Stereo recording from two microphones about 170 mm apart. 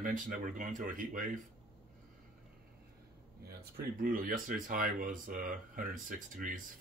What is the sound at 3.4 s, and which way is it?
Speech, 70° right (ahead or behind).